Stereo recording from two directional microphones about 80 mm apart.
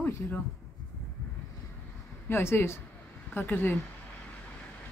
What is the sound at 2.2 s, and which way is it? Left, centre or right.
Speech, left.